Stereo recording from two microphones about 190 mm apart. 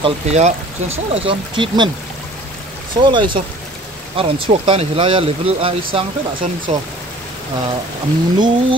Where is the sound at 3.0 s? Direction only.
25° right (ahead or behind).